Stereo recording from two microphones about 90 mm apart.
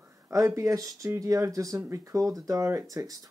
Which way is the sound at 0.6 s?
40° right (ahead or behind).